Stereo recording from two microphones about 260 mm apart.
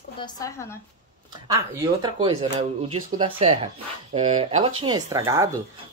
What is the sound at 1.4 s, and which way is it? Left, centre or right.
Speech, centre.